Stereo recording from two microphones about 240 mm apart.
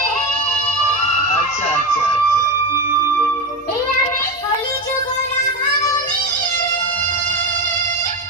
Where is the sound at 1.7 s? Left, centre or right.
Left.